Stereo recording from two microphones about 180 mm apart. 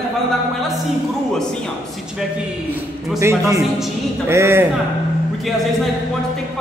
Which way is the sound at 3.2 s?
15° right (ahead or behind).